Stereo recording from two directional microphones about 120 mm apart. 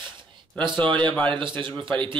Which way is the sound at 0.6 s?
40° right (ahead or behind).